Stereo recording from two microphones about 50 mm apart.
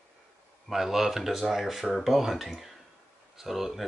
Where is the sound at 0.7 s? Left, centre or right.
Centre.